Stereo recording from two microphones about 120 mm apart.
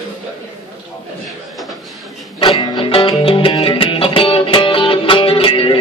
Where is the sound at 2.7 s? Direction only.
50° left (ahead or behind).